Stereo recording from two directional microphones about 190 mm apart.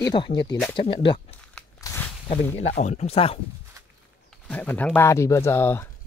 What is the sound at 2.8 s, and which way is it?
Speech, 35° left (ahead or behind).